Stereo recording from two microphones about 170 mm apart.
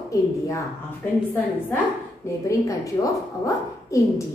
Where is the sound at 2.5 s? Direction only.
20° left (ahead or behind).